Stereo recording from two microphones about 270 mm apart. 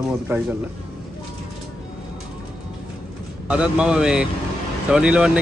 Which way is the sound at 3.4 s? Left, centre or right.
Centre.